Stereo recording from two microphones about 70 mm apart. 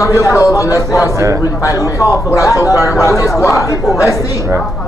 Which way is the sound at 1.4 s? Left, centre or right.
Left.